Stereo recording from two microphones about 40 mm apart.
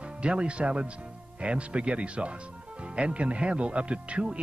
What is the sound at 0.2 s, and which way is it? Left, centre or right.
Speech, right.